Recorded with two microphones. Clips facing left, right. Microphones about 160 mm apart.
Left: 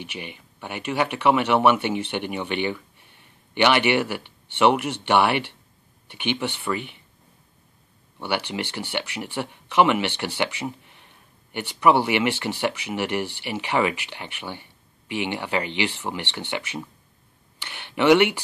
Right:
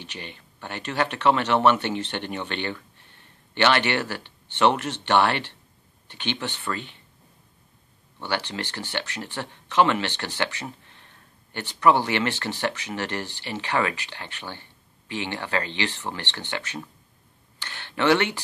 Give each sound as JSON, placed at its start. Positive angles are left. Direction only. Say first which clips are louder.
{"t": 0.0, "sound": "speech", "louder": "left 3 dB", "side_deg": 10}
{"t": 8.2, "sound": "speech", "louder": "left 2 dB", "side_deg": 15}
{"t": 17.6, "sound": "a sound", "louder": "left 3 dB", "side_deg": 15}